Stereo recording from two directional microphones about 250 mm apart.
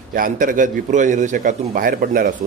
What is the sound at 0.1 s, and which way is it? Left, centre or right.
A man's voice, right.